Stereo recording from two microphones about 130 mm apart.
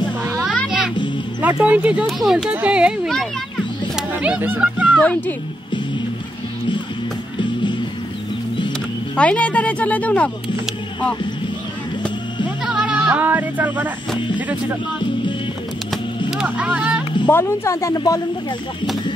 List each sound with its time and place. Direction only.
0.7 s music: 5° right (ahead or behind)
1.4 s speech: 10° right (ahead or behind)
3.9 s a sound: 10° right (ahead or behind)
4.9 s speech: 10° left (ahead or behind)
9.1 s speech: 10° left (ahead or behind)
12.6 s speech: 5° right (ahead or behind)
16.3 s vehicle: 10° right (ahead or behind)
17.3 s speech: 20° left (ahead or behind)